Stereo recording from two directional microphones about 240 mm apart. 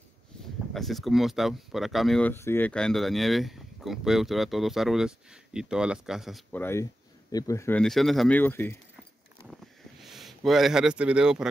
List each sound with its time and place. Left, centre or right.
0.7 s speech: centre
10.0 s speech: centre